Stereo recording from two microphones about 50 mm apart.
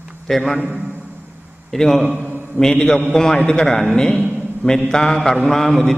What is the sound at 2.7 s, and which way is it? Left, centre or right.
Speech, left.